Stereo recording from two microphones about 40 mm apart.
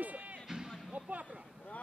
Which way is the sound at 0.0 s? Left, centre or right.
Right.